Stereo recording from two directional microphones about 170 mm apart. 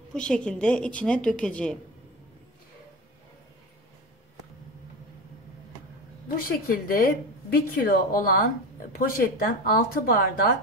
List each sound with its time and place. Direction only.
0.1 s a woman's voice: 5° left (ahead or behind)
6.2 s a woman's voice: 55° left (ahead or behind)